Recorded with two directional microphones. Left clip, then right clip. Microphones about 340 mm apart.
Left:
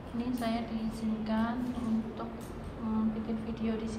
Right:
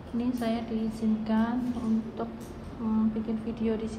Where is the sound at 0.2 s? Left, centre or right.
Centre.